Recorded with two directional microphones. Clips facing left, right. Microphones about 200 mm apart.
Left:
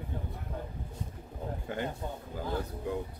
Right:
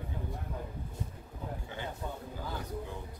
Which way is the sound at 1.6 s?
50° left (ahead or behind).